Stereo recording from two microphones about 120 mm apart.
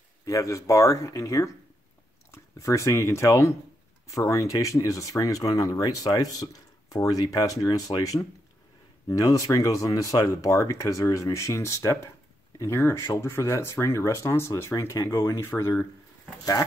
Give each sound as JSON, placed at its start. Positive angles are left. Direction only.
{"t": 0.2, "sound": "speech", "side_deg": 25}